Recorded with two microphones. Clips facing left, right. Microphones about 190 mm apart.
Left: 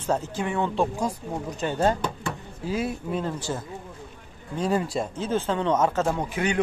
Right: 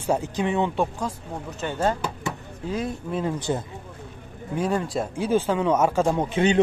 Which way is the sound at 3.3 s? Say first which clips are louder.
Right 4 dB; 20° right (ahead or behind).